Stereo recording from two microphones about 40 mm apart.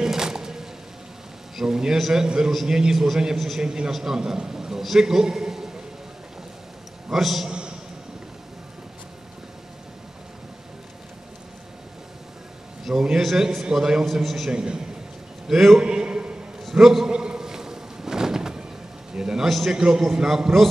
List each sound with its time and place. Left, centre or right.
0.0 s music: centre
1.6 s a sound: centre
2.0 s a man's voice: centre
2.2 s a man's voice: centre
3.6 s a man's voice: centre
7.1 s a man's voice: centre
12.9 s a man's voice: centre
14.0 s a man's voice: centre
14.5 s a man's voice: right
15.8 s a sound: right
16.7 s a man's voice: centre
17.1 s a sound: right
19.4 s a sound: centre
19.7 s a man's voice: centre